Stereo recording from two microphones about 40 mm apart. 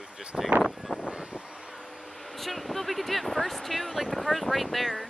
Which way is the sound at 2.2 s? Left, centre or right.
Centre.